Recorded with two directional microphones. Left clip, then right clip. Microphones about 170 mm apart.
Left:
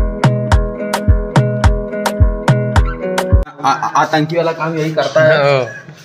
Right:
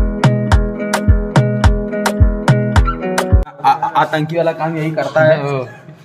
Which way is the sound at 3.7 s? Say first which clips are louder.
Even; 20° left (ahead or behind).